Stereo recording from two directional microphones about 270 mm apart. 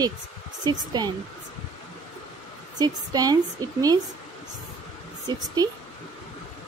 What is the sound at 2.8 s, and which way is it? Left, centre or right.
Speech, centre.